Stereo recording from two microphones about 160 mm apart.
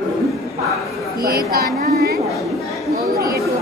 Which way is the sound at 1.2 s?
70° right (ahead or behind).